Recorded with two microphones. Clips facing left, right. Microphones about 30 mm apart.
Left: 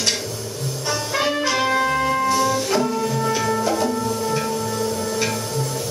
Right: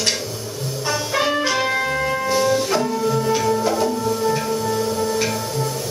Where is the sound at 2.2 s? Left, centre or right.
Centre.